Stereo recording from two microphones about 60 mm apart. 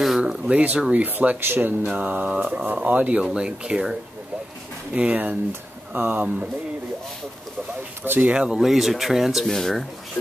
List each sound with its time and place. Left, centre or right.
0.2 s speech: centre
1.0 s speech: right
1.9 s speech: right
4.9 s speech: right
5.5 s speech: right
8.0 s speech: right
8.3 s speech: centre
8.5 s speech: centre
9.5 s speech: centre